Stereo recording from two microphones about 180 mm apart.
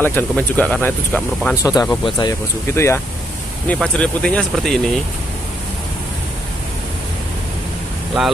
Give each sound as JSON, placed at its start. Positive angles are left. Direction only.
{"t": 0.0, "sound": "speech", "side_deg": 10}
{"t": 1.6, "sound": "speech", "side_deg": 20}
{"t": 2.7, "sound": "speech", "side_deg": 15}
{"t": 8.2, "sound": "speech", "side_deg": -5}